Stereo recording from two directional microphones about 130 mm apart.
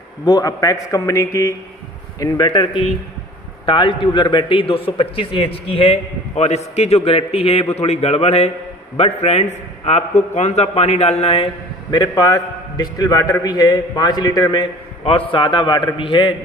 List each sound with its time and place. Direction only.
0.2 s a man's voice: 30° left (ahead or behind)
2.1 s a man's voice: 35° left (ahead or behind)
11.9 s a man's voice: 30° left (ahead or behind)